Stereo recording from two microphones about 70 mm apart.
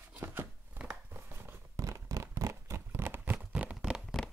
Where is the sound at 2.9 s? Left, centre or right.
Right.